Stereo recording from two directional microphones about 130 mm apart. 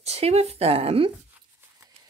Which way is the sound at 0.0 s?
55° right (ahead or behind).